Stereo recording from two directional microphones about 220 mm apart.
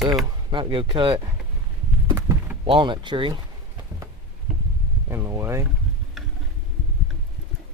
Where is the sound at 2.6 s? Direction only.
20° right (ahead or behind).